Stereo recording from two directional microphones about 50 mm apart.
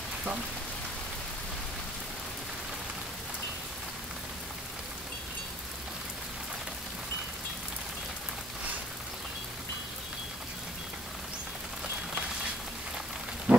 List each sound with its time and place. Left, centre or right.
13.5 s wild animals: right